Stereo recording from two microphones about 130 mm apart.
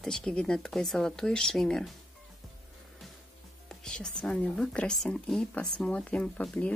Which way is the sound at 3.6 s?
5° left (ahead or behind).